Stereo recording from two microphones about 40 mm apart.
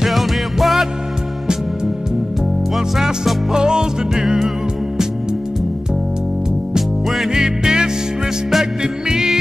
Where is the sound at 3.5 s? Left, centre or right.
Centre.